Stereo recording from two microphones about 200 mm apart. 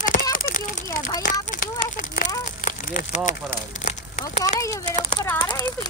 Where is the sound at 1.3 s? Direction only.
40° left (ahead or behind).